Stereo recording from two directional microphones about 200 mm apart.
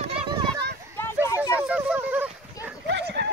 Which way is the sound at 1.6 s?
5° right (ahead or behind).